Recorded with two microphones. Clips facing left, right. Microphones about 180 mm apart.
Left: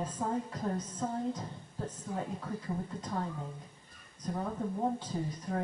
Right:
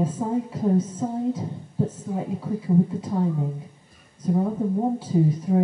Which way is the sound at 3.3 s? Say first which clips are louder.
Right 14 dB; 25° right (ahead or behind).